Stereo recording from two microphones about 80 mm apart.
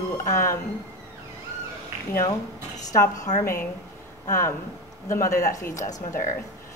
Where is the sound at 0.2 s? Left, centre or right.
Left.